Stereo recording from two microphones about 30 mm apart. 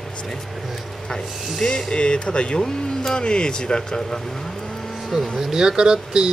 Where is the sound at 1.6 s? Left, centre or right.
Left.